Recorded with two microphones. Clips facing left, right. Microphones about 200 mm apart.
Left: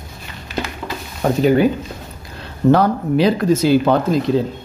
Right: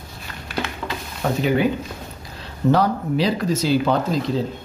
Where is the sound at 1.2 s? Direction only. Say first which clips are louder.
Left 5 dB; 40° left (ahead or behind).